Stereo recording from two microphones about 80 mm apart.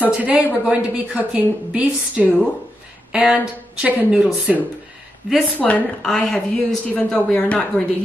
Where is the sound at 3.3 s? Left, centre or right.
Centre.